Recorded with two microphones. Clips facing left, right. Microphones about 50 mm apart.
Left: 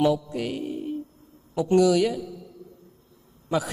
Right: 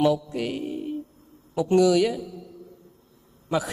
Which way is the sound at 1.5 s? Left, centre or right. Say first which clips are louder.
Even; right.